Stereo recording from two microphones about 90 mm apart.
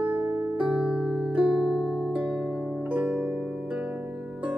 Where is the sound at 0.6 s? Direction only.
15° right (ahead or behind).